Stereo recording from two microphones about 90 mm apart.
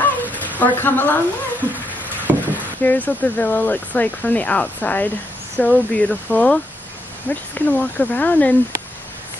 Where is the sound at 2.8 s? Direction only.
20° left (ahead or behind).